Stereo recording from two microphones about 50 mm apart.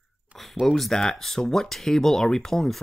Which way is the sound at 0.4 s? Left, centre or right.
Centre.